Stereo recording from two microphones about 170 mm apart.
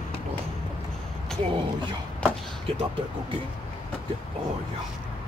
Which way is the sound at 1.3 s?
Centre (ahead or behind).